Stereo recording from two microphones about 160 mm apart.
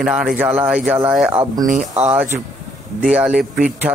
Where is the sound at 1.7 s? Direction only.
50° right (ahead or behind).